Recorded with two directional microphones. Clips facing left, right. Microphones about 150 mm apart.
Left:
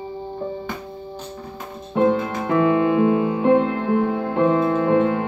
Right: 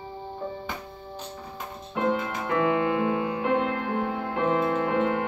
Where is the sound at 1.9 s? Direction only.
30° left (ahead or behind).